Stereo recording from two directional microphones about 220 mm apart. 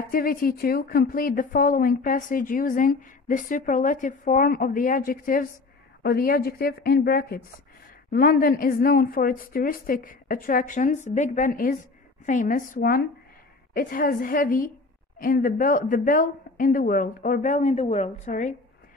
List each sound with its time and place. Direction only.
0.1 s a woman's voice: 40° left (ahead or behind)